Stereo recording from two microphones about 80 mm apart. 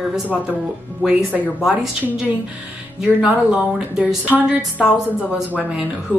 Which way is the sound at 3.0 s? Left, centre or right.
Centre.